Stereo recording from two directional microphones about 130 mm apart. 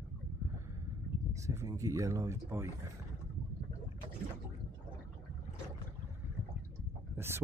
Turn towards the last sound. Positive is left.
turn(degrees=-20)  # may be behind; listen again after turning